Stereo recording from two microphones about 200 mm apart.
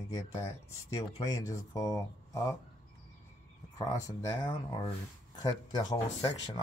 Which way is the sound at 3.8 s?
15° left (ahead or behind).